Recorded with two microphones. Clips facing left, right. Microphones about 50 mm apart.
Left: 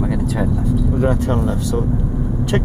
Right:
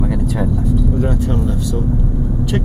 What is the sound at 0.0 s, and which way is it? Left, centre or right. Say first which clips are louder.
Vehicle: even; centre.